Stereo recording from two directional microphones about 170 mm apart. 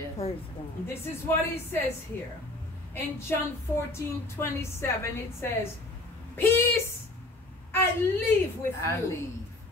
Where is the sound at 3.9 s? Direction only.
15° left (ahead or behind).